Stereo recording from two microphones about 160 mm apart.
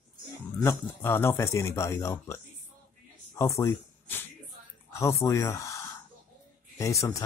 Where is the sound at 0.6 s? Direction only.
15° left (ahead or behind).